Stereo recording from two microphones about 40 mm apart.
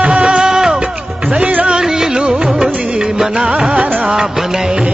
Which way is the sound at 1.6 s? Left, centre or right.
Centre.